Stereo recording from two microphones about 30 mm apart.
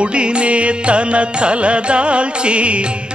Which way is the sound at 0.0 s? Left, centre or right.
Right.